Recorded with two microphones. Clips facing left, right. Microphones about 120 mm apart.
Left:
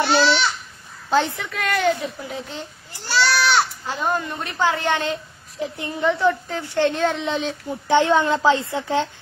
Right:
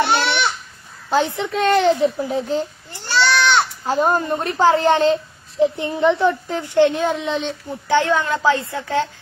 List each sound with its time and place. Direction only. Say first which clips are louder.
0.0 s a sound: even; 55° right (ahead or behind)
1.1 s speech: right 2 dB; 20° right (ahead or behind); by 2.6 s 35° right (ahead or behind)
3.0 s a sound: right 2 dB; centre (ahead or behind)
3.8 s speech: right 6 dB; 40° right (ahead or behind); by 7.2 s 15° right (ahead or behind)
7.2 s a child's voice: right 1 dB; centre (ahead or behind)
7.9 s a woman's voice: left 1 dB; 20° left (ahead or behind)